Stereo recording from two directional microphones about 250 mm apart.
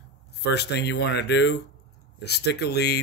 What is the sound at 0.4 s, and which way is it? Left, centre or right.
Speech, left.